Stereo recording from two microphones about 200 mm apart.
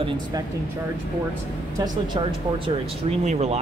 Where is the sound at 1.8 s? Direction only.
25° right (ahead or behind).